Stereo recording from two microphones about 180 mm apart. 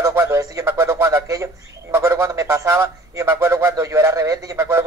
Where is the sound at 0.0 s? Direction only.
15° right (ahead or behind).